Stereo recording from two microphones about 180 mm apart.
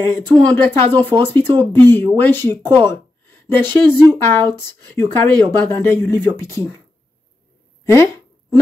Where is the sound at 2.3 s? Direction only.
10° left (ahead or behind).